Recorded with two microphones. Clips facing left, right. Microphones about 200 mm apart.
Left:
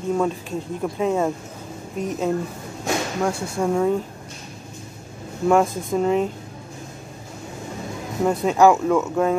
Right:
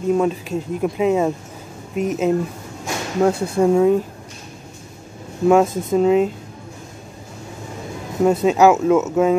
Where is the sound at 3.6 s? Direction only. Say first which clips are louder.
Right 6 dB; 10° right (ahead or behind).